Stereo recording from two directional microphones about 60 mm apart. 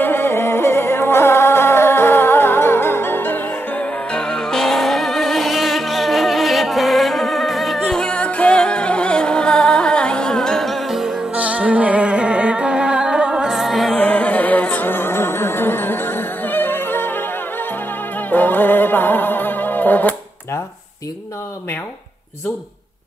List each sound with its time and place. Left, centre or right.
0.0 s music: left
4.1 s music: centre
11.3 s music: right; by 13.9 s centre
13.9 s music: left
18.3 s music: left